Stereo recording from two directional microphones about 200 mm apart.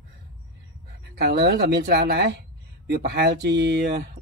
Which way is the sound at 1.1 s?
55° right (ahead or behind).